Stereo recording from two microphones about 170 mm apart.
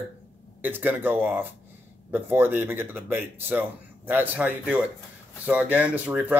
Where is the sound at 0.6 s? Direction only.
10° right (ahead or behind).